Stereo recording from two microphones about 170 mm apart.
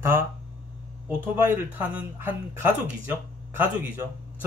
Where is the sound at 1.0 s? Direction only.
10° right (ahead or behind).